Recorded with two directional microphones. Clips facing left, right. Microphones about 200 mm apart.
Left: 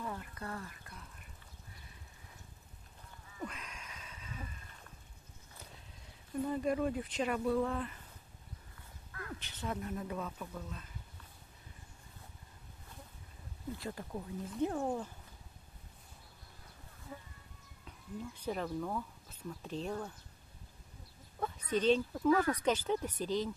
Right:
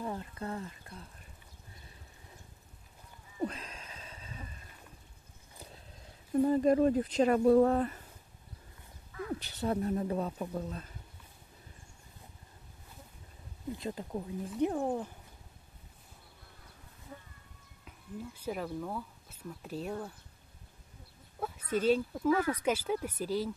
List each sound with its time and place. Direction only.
0.0 s speech: 25° right (ahead or behind)
3.3 s a sound: 30° right (ahead or behind)
6.4 s speech: 40° right (ahead or behind)
9.3 s speech: 40° right (ahead or behind)
13.7 s speech: 20° right (ahead or behind)
17.8 s speech: 5° right (ahead or behind)
21.4 s speech: 5° right (ahead or behind)